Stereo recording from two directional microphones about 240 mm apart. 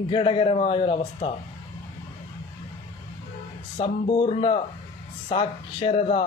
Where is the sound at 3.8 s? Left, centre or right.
Left.